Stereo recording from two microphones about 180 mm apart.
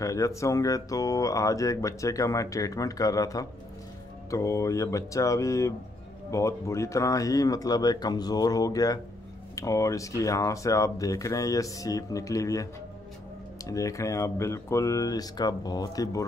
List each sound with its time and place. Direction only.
0.0 s speech: 15° left (ahead or behind)
13.7 s speech: 20° left (ahead or behind)